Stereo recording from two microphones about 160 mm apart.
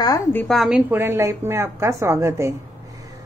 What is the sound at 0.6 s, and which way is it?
A woman's voice, 5° right (ahead or behind).